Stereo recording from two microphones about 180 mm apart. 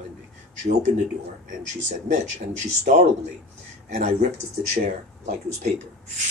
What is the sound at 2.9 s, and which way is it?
Speech, 50° right (ahead or behind).